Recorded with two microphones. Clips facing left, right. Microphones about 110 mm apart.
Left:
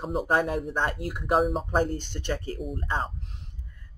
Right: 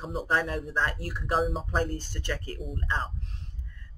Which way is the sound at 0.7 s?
20° left (ahead or behind).